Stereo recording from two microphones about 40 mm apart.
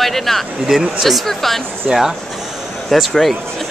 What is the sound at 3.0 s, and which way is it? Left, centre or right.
Speech, centre.